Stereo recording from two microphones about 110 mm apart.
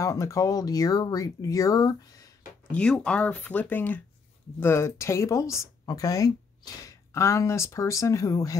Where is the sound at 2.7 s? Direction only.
10° left (ahead or behind).